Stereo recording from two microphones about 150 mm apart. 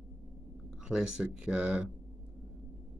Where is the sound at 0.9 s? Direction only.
5° right (ahead or behind).